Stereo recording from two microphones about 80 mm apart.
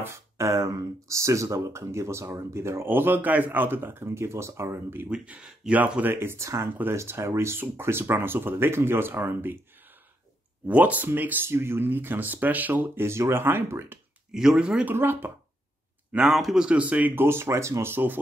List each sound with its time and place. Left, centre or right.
0.0 s speech: right
5.1 s speech: centre
10.7 s speech: centre
14.3 s speech: centre
15.0 s speech: right
16.1 s speech: centre; by 18.2 s right